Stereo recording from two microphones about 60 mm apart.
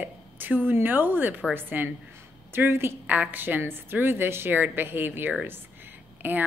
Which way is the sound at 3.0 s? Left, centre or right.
Right.